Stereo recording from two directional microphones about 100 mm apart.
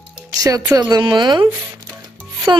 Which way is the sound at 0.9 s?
50° right (ahead or behind).